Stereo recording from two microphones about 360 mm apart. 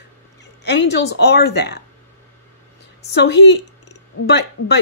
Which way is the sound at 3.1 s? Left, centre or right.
Left.